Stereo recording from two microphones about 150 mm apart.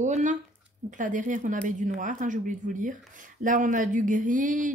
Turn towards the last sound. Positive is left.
turn(degrees=-60)  # may be behind; listen again after turning